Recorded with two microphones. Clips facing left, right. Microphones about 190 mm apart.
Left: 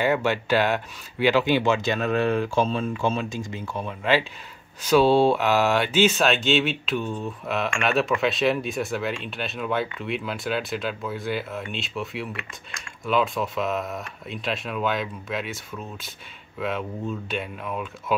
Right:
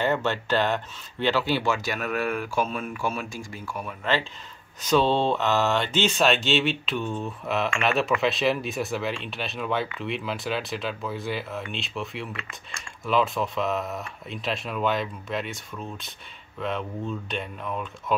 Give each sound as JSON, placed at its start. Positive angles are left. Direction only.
{"t": 0.0, "sound": "speech", "side_deg": 10}
{"t": 4.8, "sound": "speech", "side_deg": 10}